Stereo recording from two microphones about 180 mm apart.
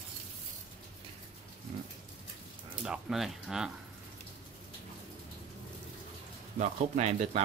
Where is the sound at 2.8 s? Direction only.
5° right (ahead or behind).